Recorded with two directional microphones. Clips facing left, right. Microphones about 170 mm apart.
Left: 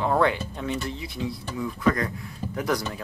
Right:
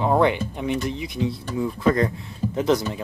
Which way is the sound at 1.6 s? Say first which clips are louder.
Right 4 dB; 30° right (ahead or behind).